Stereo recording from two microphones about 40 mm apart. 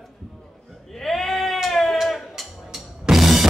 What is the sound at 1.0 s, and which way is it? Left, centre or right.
Bleat, centre.